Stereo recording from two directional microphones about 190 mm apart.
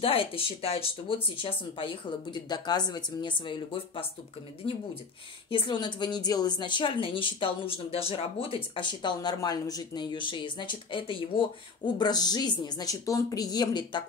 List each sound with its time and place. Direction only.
0.0 s a woman's voice: 30° left (ahead or behind)
5.5 s a woman's voice: 25° left (ahead or behind)